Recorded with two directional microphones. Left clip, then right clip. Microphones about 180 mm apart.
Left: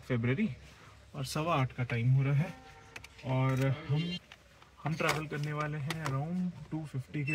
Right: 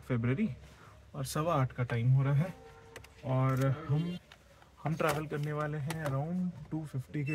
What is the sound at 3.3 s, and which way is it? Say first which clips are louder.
Speech: right 1 dB; 15° right (ahead or behind).